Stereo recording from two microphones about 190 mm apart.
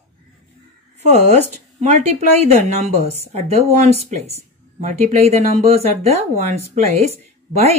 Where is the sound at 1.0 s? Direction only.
35° right (ahead or behind).